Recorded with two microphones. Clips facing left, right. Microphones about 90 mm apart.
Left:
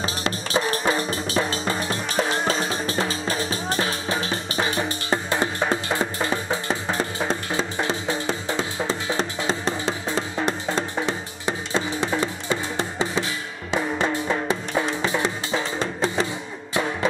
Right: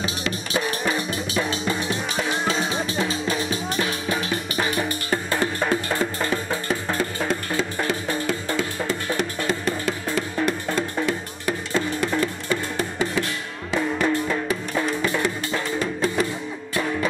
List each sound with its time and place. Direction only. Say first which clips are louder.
0.0 s music: left 1 dB; 35° left (ahead or behind)